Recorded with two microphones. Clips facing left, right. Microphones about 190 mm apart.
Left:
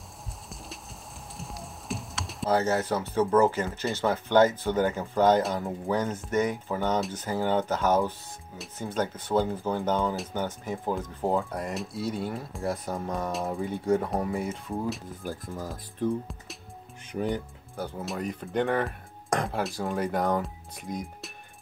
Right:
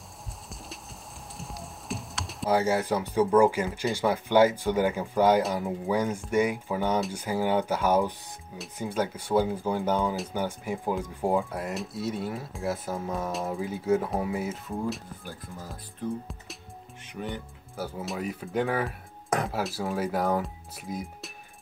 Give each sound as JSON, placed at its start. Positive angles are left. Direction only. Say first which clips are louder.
{"t": 1.4, "sound": "typing", "louder": "even", "side_deg": 0}
{"t": 2.5, "sound": "speech", "louder": "right 1 dB", "side_deg": -10}
{"t": 11.5, "sound": "speech", "louder": "even", "side_deg": 0}
{"t": 15.2, "sound": "speech", "louder": "left 9 dB", "side_deg": 50}
{"t": 17.1, "sound": "speech", "louder": "left 6 dB", "side_deg": 40}
{"t": 17.7, "sound": "speech", "louder": "even", "side_deg": -5}